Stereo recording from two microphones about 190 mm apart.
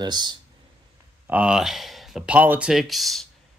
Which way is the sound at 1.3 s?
5° right (ahead or behind).